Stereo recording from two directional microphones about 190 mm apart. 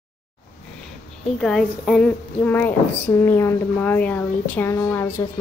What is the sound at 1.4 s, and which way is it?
A woman's voice, centre (ahead or behind).